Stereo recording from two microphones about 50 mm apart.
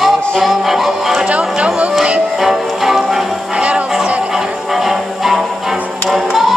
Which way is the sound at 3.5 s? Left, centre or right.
Right.